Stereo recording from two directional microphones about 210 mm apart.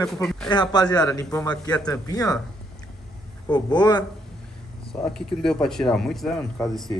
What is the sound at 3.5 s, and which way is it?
Speech, 20° left (ahead or behind).